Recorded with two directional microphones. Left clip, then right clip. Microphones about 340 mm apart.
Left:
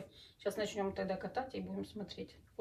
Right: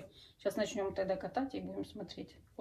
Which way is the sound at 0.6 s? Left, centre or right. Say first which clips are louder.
Right 2 dB; centre.